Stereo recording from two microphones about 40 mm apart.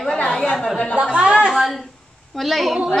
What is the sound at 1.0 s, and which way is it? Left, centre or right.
Speech, right.